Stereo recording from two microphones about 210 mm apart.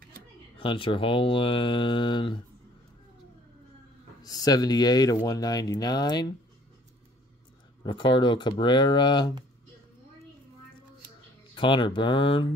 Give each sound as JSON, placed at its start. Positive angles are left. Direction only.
{"t": 0.6, "sound": "speech", "side_deg": 25}
{"t": 4.2, "sound": "speech", "side_deg": 20}
{"t": 7.8, "sound": "speech", "side_deg": 20}
{"t": 11.5, "sound": "speech", "side_deg": 25}